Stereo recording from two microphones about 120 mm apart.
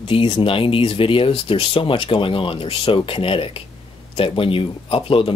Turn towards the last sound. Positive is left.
turn(degrees=50)  # may be behind; listen again after turning